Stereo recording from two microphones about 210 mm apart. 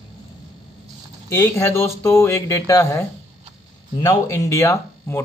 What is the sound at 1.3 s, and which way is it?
Speech, 10° left (ahead or behind).